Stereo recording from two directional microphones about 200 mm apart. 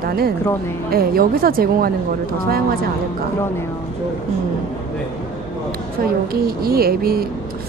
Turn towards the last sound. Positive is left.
turn(degrees=-50)  # may be behind; listen again after turning